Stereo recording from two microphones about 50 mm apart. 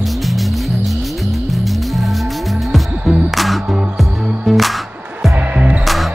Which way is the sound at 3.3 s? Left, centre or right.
Centre.